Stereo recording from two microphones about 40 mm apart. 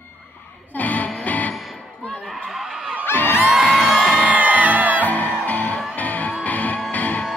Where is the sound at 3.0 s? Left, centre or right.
Left.